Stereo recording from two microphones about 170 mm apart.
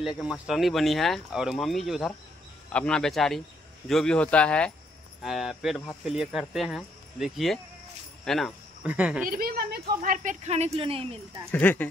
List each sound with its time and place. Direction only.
0.0 s speech: 5° right (ahead or behind)
9.3 s speech: 60° right (ahead or behind); by 11.1 s 35° right (ahead or behind)
11.5 s speech: 10° left (ahead or behind)